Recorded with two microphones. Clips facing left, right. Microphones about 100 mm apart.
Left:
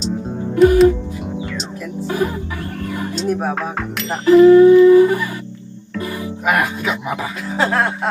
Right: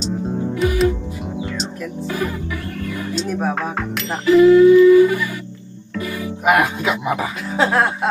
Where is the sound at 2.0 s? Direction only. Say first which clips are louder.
Left 4 dB; 25° left (ahead or behind).